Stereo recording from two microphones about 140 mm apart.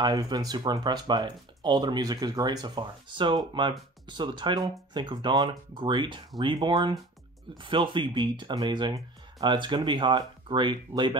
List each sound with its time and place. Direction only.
0.0 s speech: 30° right (ahead or behind)